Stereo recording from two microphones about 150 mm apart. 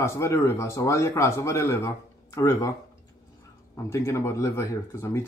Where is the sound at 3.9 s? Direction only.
20° left (ahead or behind).